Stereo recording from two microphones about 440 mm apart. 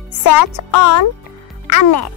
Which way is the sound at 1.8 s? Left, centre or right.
Left.